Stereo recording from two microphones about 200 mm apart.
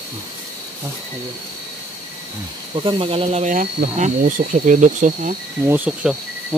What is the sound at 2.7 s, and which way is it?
Speech, 25° right (ahead or behind).